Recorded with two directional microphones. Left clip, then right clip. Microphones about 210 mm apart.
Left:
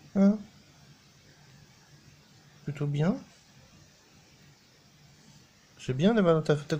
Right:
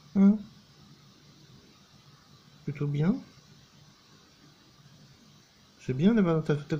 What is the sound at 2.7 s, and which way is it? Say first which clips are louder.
Speech: even; 20° left (ahead or behind).